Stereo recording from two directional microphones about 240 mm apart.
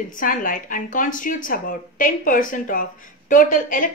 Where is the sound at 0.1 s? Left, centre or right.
Left.